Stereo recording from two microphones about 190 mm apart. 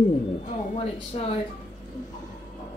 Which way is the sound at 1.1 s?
30° left (ahead or behind).